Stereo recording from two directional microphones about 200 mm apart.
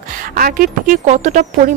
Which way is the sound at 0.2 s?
45° right (ahead or behind).